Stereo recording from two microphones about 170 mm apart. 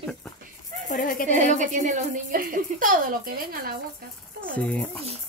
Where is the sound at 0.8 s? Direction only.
50° left (ahead or behind).